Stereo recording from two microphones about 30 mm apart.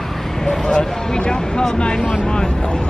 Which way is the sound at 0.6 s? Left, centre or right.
Left.